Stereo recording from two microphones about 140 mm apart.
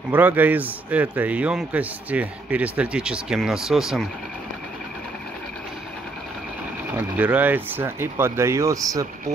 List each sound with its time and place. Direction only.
0.1 s a man's voice: 15° right (ahead or behind)
7.0 s a man's voice: 15° right (ahead or behind)